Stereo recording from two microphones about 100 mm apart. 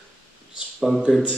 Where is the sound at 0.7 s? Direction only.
5° right (ahead or behind).